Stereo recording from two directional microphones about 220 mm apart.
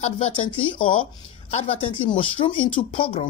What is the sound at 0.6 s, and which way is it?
Speech, 25° left (ahead or behind).